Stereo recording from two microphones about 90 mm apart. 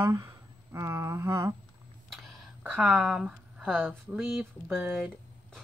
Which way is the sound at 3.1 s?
10° right (ahead or behind).